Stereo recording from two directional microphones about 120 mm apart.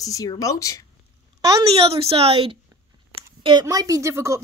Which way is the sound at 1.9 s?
55° right (ahead or behind).